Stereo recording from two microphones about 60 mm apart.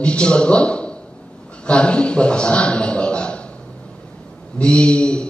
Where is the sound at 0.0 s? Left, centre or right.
Centre.